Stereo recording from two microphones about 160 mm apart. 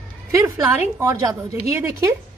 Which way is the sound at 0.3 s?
15° right (ahead or behind).